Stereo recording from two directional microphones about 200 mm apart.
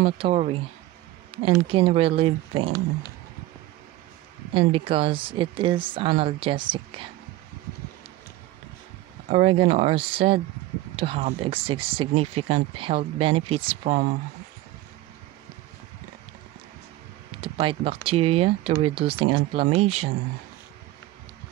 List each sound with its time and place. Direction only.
0.0 s speech: 30° right (ahead or behind)
4.6 s speech: 30° right (ahead or behind)
9.3 s speech: 30° right (ahead or behind)
17.4 s speech: 30° right (ahead or behind)